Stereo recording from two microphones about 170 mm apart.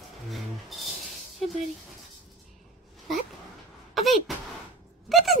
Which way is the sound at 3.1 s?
Centre (ahead or behind).